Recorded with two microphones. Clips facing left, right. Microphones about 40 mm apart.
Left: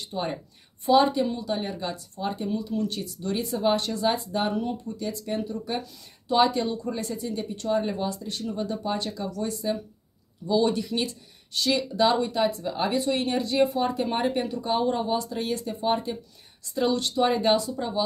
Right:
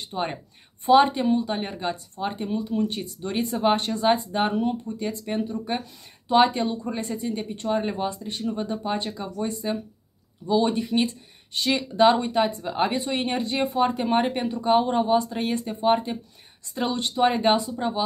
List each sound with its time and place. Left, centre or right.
0.0 s speech: right